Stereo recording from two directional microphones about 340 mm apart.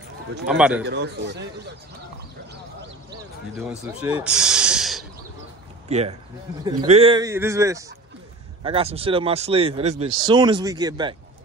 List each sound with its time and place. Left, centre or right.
0.5 s a man's voice: centre
0.8 s a man's voice: right
3.8 s a sound: centre
5.9 s speech: centre